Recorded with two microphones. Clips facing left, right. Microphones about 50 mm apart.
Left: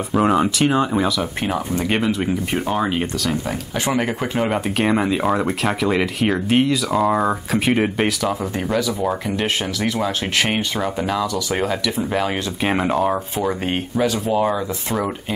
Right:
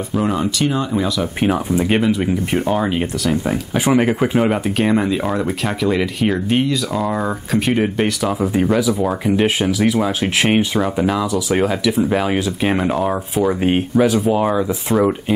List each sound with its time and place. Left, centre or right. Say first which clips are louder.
0.1 s speech: left 3 dB; centre
1.4 s speech: right 8 dB; centre
3.4 s speech: right 5 dB; centre
8.2 s speech: right 5 dB; centre